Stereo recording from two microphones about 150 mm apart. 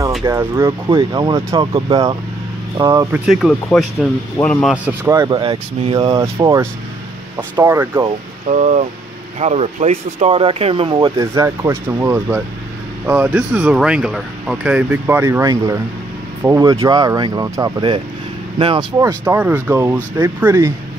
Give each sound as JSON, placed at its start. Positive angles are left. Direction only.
{"t": 0.2, "sound": "speech", "side_deg": -20}
{"t": 3.3, "sound": "speech", "side_deg": 0}
{"t": 4.8, "sound": "speech", "side_deg": -20}
{"t": 6.2, "sound": "speech", "side_deg": -20}
{"t": 8.5, "sound": "speech", "side_deg": -50}
{"t": 18.9, "sound": "speech", "side_deg": -20}